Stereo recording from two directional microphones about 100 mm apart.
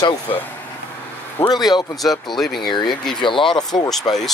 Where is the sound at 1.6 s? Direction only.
45° left (ahead or behind).